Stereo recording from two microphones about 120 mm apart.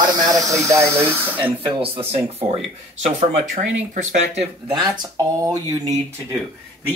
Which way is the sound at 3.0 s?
90° right.